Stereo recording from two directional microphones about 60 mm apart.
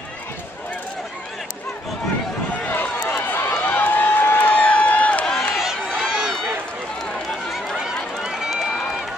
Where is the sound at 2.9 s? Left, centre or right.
Left.